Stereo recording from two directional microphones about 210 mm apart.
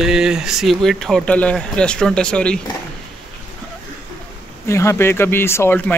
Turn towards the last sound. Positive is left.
turn(degrees=10)  # may be behind; listen again after turning